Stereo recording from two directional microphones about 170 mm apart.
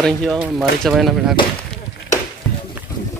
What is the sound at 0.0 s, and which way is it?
Speech, centre (ahead or behind).